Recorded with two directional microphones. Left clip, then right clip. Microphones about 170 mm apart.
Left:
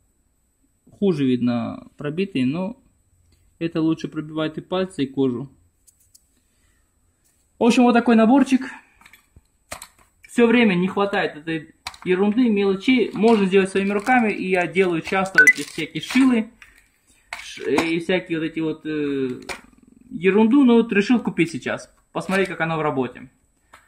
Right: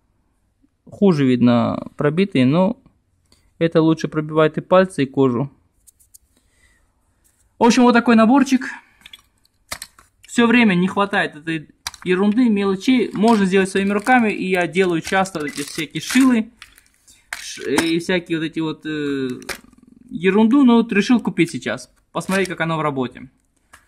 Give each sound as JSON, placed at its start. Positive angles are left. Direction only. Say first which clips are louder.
{"t": 0.8, "sound": "speech", "louder": "right 4 dB", "side_deg": -40}
{"t": 7.5, "sound": "speech", "louder": "right 3 dB", "side_deg": -40}
{"t": 9.7, "sound": "a sound", "louder": "right 4 dB", "side_deg": -20}
{"t": 10.3, "sound": "speech", "louder": "right 1 dB", "side_deg": -30}
{"t": 17.9, "sound": "speech", "louder": "right 2 dB", "side_deg": -35}
{"t": 20.8, "sound": "speech", "louder": "right 2 dB", "side_deg": -25}